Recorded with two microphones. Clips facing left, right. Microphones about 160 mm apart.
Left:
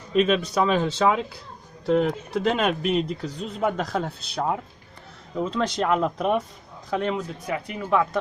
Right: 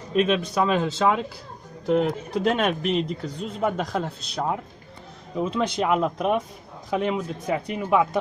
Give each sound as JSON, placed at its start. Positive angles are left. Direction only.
{"t": 0.3, "sound": "a man's voice", "side_deg": 0}
{"t": 7.4, "sound": "a man's voice", "side_deg": -25}